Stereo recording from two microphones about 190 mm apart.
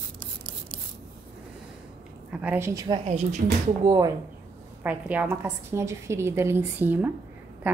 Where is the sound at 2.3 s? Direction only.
5° right (ahead or behind).